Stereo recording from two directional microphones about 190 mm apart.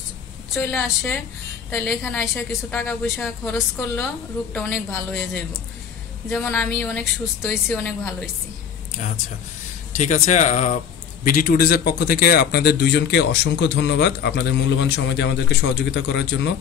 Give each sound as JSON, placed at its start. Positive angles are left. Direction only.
{"t": 0.6, "sound": "a woman's voice", "side_deg": 5}
{"t": 6.4, "sound": "a woman's voice", "side_deg": 10}
{"t": 9.9, "sound": "a man's voice", "side_deg": 35}